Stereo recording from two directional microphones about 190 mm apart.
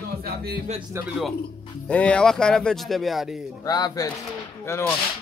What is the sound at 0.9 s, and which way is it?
Speech, 15° right (ahead or behind).